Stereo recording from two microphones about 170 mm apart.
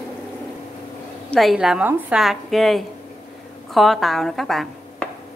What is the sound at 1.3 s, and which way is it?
A woman's voice, centre (ahead or behind).